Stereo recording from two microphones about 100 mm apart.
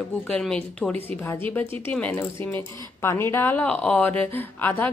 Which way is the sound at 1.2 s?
25° left (ahead or behind).